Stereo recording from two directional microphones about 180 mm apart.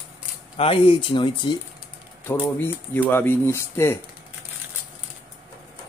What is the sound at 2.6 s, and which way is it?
Speech, 10° left (ahead or behind).